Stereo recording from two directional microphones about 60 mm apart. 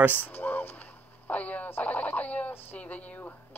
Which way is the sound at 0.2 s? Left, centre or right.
Left.